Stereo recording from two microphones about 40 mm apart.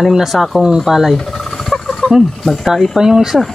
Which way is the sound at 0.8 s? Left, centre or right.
Centre.